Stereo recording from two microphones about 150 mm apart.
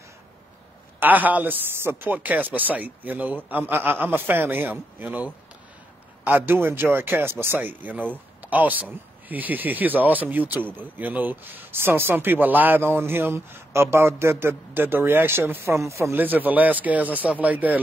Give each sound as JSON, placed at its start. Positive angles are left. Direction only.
{"t": 0.9, "sound": "speech", "side_deg": -10}